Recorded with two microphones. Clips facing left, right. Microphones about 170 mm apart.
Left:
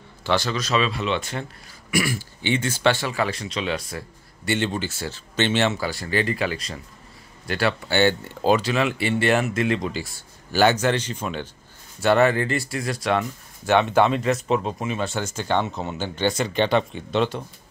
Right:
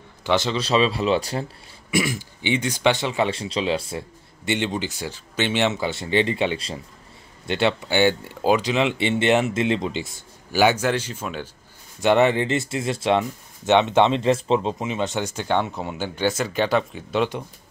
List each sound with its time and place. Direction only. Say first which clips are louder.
0.2 s speech: right 2 dB; 20° right (ahead or behind); by 1.4 s 35° right (ahead or behind)
1.9 s speech: right 1 dB; 20° right (ahead or behind)
4.5 s speech: even; 15° right (ahead or behind)
10.5 s speech: even; 10° right (ahead or behind)
12.0 s speech: right 1 dB; 20° right (ahead or behind)